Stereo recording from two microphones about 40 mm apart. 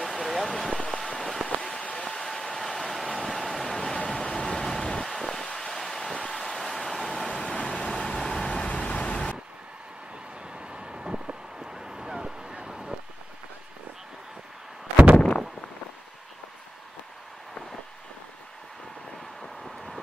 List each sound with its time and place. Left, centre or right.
0.0 s a sound: centre
2.0 s vehicle: centre
5.0 s a sound: centre
5.6 s vehicle: centre
7.7 s vehicle: left
8.6 s vehicle: left
10.6 s vehicle: right
19.6 s vehicle: centre